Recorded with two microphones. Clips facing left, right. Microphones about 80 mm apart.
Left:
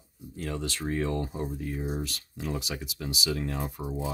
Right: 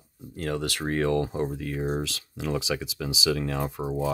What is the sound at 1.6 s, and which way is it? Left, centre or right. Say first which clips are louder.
Speech: right 4 dB; right.